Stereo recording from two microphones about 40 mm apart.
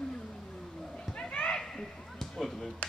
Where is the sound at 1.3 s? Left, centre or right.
Left.